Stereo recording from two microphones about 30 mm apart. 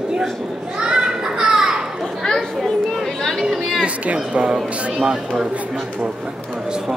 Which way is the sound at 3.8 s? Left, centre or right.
Right.